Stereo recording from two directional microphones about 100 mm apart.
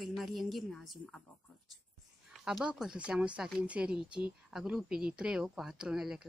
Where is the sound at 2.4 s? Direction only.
5° right (ahead or behind).